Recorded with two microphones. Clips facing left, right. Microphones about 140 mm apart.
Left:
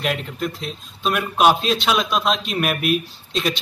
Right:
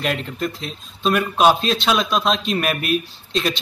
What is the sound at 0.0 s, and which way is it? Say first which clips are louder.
Speech: right 1 dB; 5° left (ahead or behind).